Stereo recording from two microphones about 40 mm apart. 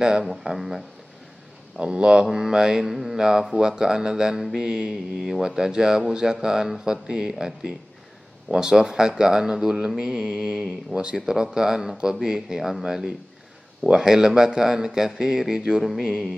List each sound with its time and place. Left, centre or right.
0.2 s speech: centre
1.8 s speech: centre